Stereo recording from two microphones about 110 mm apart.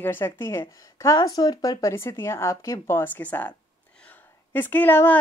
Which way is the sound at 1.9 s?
25° left (ahead or behind).